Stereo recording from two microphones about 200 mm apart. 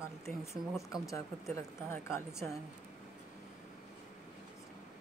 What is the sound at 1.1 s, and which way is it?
A woman's voice, 15° left (ahead or behind).